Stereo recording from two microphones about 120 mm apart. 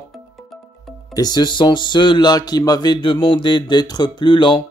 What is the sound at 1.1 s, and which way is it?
A man's voice, 35° left (ahead or behind).